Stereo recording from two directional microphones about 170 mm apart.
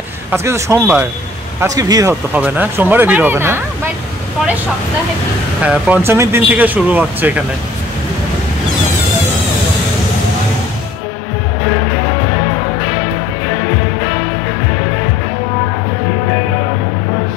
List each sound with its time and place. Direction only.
0.3 s speech: 15° right (ahead or behind)
2.3 s speech: 10° right (ahead or behind)
5.6 s speech: 10° right (ahead or behind)